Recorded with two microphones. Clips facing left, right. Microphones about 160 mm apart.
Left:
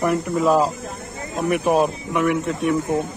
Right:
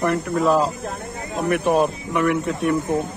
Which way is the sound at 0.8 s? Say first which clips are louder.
Right 3 dB; 60° right (ahead or behind).